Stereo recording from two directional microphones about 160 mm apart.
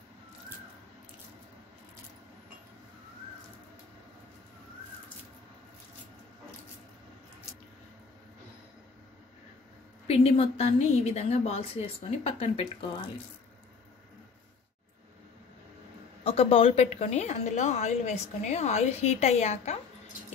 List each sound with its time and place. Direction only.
10.0 s a woman's voice: 40° left (ahead or behind)
16.3 s a woman's voice: 35° left (ahead or behind)